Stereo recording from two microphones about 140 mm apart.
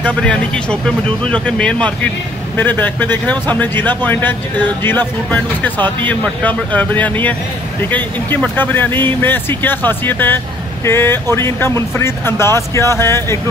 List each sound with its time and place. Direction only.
0.0 s speech: 10° left (ahead or behind)